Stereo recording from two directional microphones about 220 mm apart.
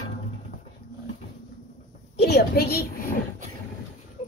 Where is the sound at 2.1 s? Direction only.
50° left (ahead or behind).